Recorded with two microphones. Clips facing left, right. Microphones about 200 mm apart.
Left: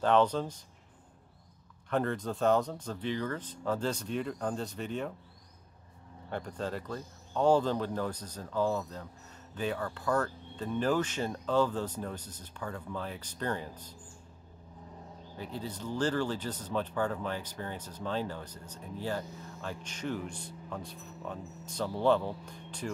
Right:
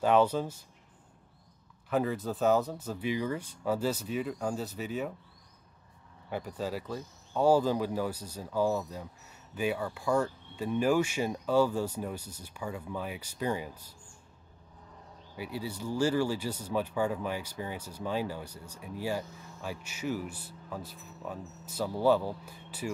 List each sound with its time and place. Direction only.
0.0 s speech: 10° right (ahead or behind)
1.9 s speech: 5° right (ahead or behind)
6.3 s speech: 5° right (ahead or behind)
15.3 s speech: 10° right (ahead or behind)